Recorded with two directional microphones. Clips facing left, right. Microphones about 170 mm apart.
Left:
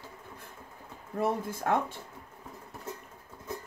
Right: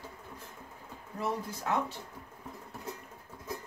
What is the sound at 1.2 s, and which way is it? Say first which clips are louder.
Speech: left 5 dB; 50° left (ahead or behind).